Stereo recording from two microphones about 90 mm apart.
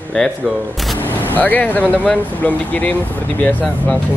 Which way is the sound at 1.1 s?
20° left (ahead or behind).